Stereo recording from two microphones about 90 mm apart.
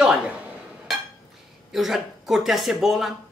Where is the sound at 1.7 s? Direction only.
5° right (ahead or behind).